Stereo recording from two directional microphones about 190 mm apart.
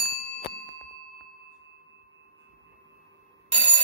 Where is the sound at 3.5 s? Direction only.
10° right (ahead or behind).